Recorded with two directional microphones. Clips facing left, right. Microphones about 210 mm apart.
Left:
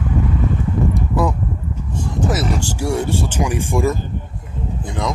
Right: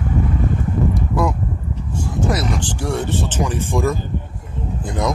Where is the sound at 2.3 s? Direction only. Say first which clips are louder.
Left 1 dB; 5° left (ahead or behind).